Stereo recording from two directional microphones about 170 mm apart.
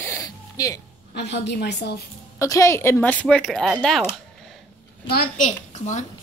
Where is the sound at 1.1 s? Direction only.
90° left.